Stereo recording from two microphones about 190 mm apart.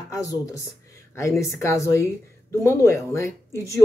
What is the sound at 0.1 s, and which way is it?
Speech, 15° left (ahead or behind).